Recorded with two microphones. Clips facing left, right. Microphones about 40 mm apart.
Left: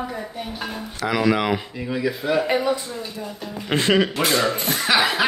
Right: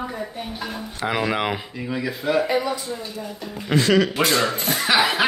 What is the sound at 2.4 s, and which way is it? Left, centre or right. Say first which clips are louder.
Speech: left 1 dB; left.